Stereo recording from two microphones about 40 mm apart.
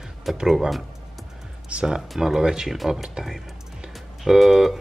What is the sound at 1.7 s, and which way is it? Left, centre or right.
Speech, right.